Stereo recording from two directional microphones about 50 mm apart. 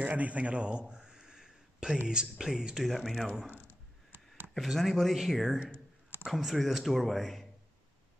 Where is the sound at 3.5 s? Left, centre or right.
Left.